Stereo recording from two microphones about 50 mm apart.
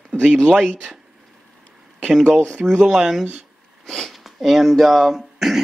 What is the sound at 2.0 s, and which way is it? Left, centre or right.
Speech, centre.